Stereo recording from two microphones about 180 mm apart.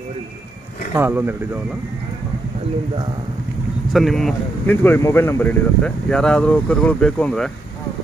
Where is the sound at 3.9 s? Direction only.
Centre (ahead or behind).